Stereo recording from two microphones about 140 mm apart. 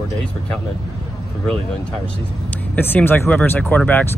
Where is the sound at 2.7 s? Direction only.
10° left (ahead or behind).